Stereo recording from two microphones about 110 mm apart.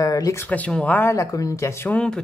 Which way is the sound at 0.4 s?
15° left (ahead or behind).